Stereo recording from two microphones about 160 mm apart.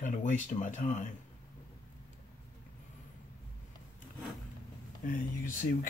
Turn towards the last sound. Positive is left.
turn(degrees=55)  # may be behind; listen again after turning